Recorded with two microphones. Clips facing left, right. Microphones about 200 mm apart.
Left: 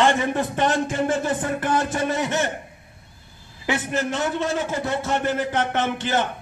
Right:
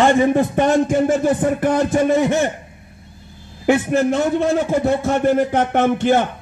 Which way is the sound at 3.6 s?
50° right (ahead or behind).